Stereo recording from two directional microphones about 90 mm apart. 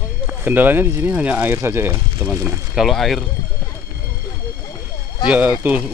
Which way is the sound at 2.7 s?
Centre (ahead or behind).